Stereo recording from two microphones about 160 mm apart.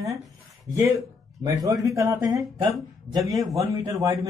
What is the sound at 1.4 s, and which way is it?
Speech, 25° right (ahead or behind).